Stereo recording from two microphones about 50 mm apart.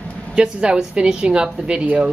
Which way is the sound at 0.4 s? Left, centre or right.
Centre.